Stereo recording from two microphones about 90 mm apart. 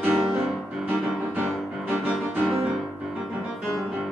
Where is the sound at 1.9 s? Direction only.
20° right (ahead or behind).